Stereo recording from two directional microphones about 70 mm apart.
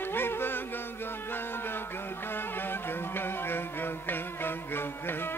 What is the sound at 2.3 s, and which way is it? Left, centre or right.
Music, left.